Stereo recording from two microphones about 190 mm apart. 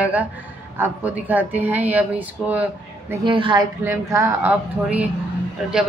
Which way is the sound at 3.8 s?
15° right (ahead or behind).